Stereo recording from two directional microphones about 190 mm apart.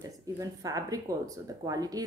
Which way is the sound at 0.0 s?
20° right (ahead or behind).